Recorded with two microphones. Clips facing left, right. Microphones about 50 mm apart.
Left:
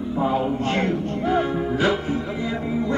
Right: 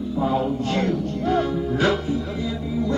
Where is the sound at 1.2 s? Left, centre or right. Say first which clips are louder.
Even; centre.